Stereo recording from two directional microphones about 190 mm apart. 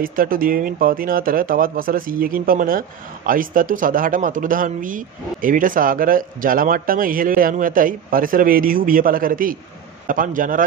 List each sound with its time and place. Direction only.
0.0 s speech: 50° right (ahead or behind)